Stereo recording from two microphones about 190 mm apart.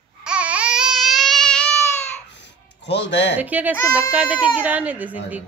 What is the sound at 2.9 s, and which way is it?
Speech, 65° left (ahead or behind).